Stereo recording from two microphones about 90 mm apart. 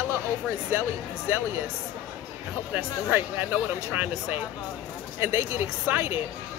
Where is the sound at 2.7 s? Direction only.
20° right (ahead or behind).